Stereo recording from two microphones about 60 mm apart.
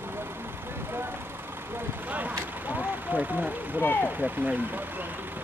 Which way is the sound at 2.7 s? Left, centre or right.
Right.